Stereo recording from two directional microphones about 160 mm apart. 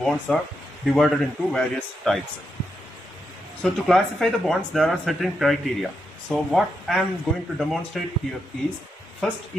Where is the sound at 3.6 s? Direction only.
Centre (ahead or behind).